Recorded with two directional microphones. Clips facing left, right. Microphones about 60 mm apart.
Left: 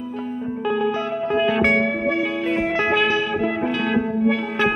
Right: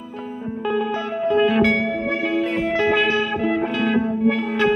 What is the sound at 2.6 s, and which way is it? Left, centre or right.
Music, left.